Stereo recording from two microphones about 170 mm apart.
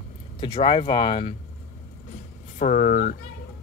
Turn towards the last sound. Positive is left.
turn(degrees=50)  # may be behind; listen again after turning